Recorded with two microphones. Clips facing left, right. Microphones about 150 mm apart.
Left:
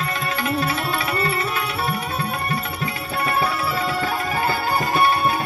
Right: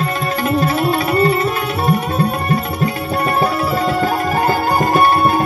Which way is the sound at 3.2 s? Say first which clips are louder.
Right 5 dB; 45° right (ahead or behind).